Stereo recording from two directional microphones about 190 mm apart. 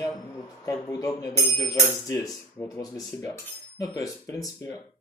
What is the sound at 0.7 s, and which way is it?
Cutlery, 15° left (ahead or behind).